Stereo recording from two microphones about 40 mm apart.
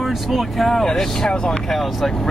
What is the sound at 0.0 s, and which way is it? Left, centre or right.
Speech, centre.